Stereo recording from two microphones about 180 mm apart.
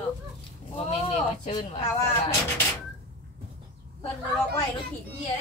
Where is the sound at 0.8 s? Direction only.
35° left (ahead or behind).